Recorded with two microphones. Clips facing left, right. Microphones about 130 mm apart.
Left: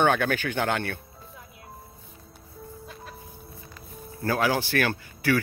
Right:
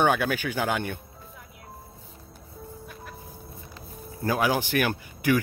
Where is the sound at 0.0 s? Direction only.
10° right (ahead or behind).